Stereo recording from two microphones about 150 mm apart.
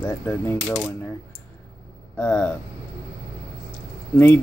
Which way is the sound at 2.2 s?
15° left (ahead or behind).